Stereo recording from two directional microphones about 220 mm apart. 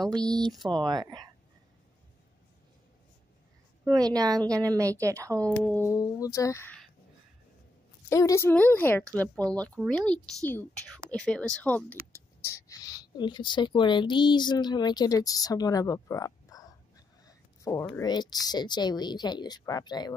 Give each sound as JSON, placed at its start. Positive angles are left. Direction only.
{"t": 0.7, "sound": "speech", "side_deg": -20}
{"t": 3.9, "sound": "speech", "side_deg": -15}
{"t": 5.6, "sound": "speech", "side_deg": 10}
{"t": 8.1, "sound": "speech", "side_deg": 15}
{"t": 17.2, "sound": "a sound", "side_deg": 15}
{"t": 18.0, "sound": "speech", "side_deg": 20}